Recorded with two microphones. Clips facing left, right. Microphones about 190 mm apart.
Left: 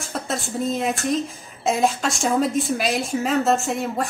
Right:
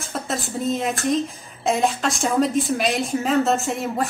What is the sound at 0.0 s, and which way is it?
Speech, centre (ahead or behind).